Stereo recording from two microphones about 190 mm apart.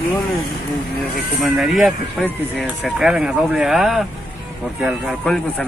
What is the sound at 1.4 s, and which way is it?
Speech, centre (ahead or behind).